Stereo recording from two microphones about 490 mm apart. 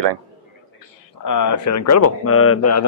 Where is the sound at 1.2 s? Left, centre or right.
Left.